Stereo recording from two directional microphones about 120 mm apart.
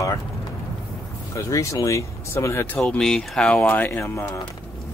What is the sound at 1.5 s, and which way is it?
Speech, 25° left (ahead or behind).